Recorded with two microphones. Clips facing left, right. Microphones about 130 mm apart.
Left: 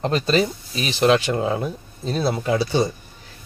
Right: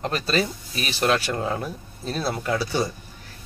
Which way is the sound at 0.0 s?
25° left (ahead or behind).